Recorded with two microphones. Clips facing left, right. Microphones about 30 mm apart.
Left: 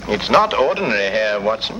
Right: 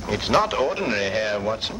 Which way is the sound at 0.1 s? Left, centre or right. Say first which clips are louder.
Left 6 dB; left.